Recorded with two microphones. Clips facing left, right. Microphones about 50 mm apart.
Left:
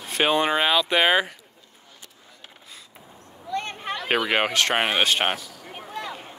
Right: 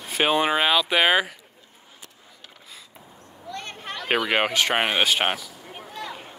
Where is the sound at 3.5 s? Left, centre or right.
Left.